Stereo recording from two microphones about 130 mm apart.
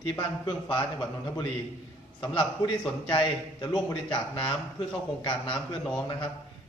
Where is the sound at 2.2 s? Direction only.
35° left (ahead or behind).